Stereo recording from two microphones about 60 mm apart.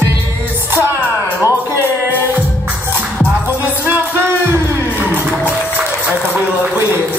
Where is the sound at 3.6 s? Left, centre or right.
Right.